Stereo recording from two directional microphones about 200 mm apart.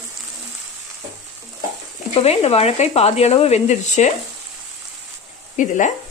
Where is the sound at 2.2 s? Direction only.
30° left (ahead or behind).